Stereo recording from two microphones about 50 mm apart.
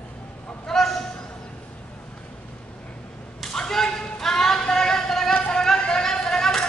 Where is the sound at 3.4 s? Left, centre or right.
Centre.